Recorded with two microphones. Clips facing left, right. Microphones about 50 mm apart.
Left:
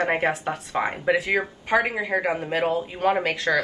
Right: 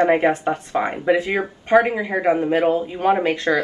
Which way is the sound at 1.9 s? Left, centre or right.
Centre.